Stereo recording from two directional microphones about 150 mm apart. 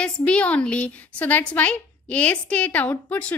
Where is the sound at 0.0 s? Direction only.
5° left (ahead or behind).